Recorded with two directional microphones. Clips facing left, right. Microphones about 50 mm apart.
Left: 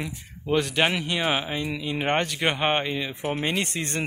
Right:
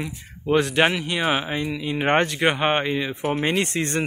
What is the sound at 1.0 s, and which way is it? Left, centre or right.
Speech, centre.